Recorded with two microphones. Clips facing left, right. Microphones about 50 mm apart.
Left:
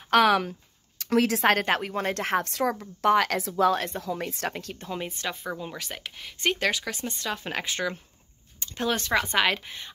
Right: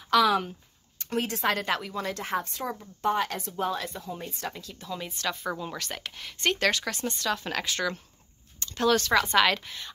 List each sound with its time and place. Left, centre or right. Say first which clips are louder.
0.1 s speech: left 2 dB; left
0.5 s a sound: left 4 dB; left
1.4 s speech: left 4 dB; left
2.2 s speech: left 5 dB; left
3.7 s speech: left 5 dB; left
4.0 s a woman's voice: left 5 dB; left
4.8 s speech: right 1 dB; left
5.4 s speech: right 1 dB; centre